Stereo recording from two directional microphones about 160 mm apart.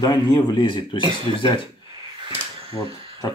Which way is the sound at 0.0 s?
25° left (ahead or behind).